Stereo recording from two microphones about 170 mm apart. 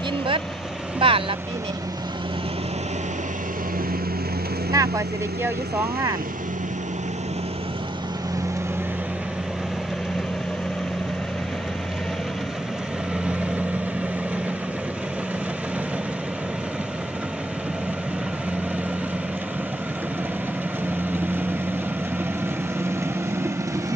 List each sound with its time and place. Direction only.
0.9 s speech: 35° right (ahead or behind)
4.7 s speech: 15° right (ahead or behind)
13.2 s vehicle: 5° right (ahead or behind)
22.8 s vehicle: 15° right (ahead or behind)